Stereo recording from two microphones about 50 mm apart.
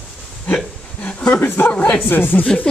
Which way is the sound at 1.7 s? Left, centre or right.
Left.